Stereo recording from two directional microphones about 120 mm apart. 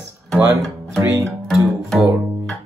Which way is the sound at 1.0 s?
25° right (ahead or behind).